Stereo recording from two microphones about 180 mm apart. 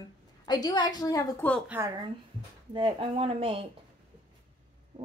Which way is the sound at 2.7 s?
30° right (ahead or behind).